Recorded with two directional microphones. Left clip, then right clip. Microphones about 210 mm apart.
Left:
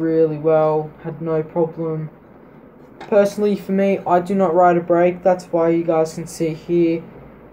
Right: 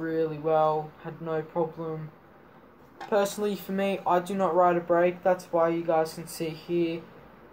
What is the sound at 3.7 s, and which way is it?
Speech, 55° right (ahead or behind).